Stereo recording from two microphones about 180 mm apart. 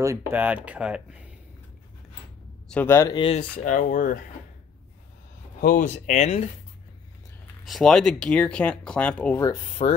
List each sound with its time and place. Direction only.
0.0 s speech: 15° right (ahead or behind)
2.7 s speech: 10° left (ahead or behind)
3.2 s speech: 30° left (ahead or behind)
3.5 s speech: 45° left (ahead or behind)
5.6 s speech: 50° left (ahead or behind)
7.6 s speech: centre (ahead or behind)
9.4 s speech: 25° left (ahead or behind)